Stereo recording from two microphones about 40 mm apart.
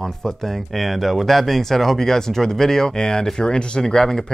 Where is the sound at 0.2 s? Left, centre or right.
Centre.